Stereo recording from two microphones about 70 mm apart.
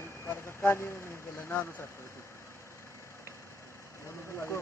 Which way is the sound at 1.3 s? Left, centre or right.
Left.